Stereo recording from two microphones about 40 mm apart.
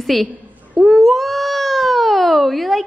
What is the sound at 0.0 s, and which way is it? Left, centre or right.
Speech, centre.